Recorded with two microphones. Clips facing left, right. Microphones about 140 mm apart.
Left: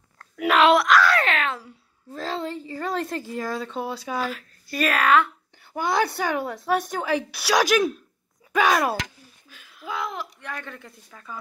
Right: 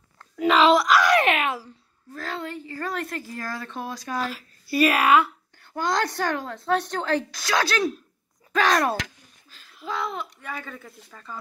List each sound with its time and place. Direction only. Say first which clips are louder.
0.4 s speech: even; centre (ahead or behind)
0.9 s a sound: right 1 dB; 15° right (ahead or behind)
2.1 s speech: left 3 dB; 30° left (ahead or behind); by 5.3 s 10° right (ahead or behind)
5.6 s speech: left 2 dB; 10° left (ahead or behind)